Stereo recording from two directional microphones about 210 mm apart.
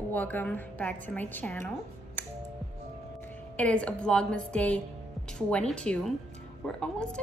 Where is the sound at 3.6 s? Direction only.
5° left (ahead or behind).